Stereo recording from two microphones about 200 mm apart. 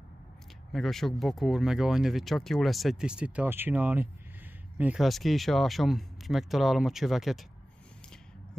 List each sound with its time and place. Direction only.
0.7 s speech: centre (ahead or behind)